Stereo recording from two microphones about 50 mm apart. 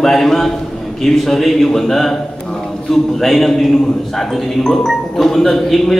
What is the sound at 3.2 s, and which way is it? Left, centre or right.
A man's voice, centre.